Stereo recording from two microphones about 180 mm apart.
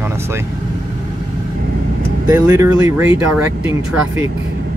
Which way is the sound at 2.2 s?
20° right (ahead or behind).